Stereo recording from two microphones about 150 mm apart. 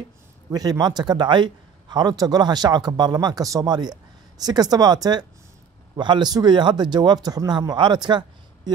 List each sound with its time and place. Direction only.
0.5 s speech: 25° right (ahead or behind)